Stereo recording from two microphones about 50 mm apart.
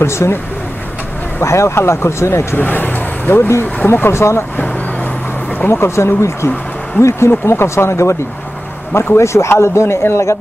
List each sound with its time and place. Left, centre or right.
0.0 s speech: left
1.4 s speech: left
2.5 s vehicle: left
3.8 s speech: left
4.1 s speech: left
5.7 s speech: left
8.9 s speech: left